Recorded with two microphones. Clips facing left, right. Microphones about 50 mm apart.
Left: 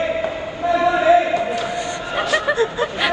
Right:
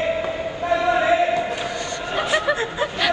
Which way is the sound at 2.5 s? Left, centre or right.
Right.